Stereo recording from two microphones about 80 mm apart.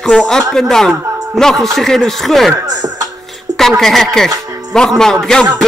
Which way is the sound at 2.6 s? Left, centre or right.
Right.